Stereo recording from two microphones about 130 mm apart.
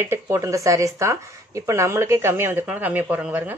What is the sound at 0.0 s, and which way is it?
Speech, 20° right (ahead or behind).